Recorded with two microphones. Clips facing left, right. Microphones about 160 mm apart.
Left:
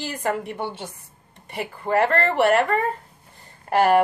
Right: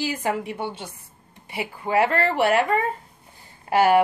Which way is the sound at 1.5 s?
5° right (ahead or behind).